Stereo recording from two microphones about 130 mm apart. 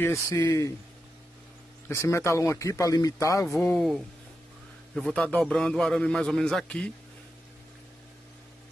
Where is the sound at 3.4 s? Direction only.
Centre (ahead or behind).